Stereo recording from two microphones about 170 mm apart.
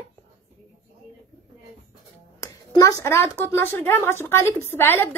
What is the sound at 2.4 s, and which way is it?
A woman's voice, 20° left (ahead or behind).